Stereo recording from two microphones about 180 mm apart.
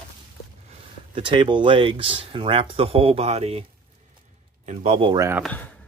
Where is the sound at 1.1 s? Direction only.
30° right (ahead or behind).